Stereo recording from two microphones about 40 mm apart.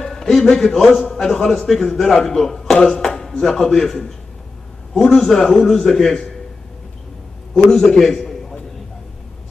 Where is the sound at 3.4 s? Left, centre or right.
Centre.